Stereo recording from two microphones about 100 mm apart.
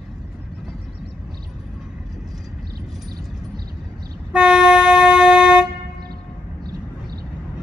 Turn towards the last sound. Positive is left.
turn(degrees=-45)  # may be behind; listen again after turning